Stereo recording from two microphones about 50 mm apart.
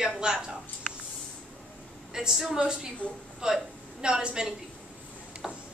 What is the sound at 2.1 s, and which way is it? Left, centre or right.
Speech, centre.